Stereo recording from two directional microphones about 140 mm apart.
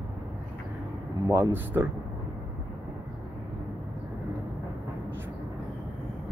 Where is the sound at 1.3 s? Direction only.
15° right (ahead or behind).